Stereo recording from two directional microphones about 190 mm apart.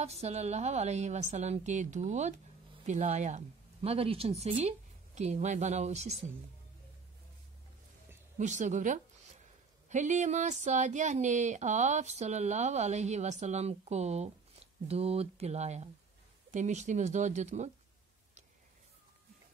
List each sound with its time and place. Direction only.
0.0 s speech: 35° right (ahead or behind)
8.4 s speech: 40° right (ahead or behind)